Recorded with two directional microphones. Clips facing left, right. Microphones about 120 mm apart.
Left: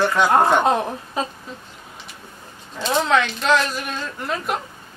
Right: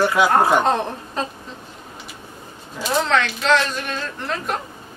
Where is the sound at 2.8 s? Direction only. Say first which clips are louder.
Even; 5° right (ahead or behind).